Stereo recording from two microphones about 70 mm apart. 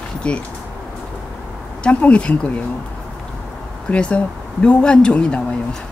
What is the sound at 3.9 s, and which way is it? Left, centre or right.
Speech, centre.